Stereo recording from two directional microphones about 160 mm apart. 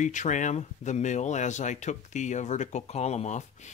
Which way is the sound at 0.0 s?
50° left (ahead or behind).